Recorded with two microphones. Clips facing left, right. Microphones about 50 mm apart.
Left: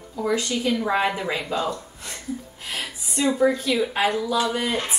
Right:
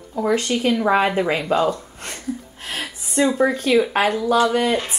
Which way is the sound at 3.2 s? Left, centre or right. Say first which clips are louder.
Right 1 dB; right.